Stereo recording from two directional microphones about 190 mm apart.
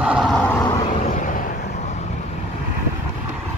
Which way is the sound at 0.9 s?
40° left (ahead or behind).